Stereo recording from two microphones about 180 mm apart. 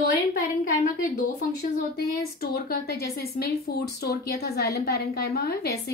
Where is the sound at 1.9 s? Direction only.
60° left (ahead or behind).